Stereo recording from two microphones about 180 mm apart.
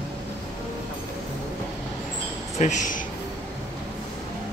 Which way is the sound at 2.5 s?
40° left (ahead or behind).